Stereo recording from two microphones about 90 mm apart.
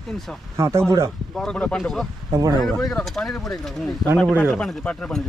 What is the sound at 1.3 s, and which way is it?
Speech, 5° left (ahead or behind).